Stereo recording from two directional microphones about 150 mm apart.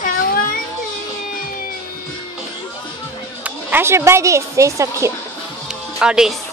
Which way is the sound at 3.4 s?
15° right (ahead or behind).